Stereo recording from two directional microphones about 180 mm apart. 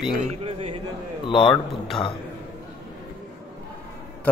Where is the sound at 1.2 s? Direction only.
25° left (ahead or behind).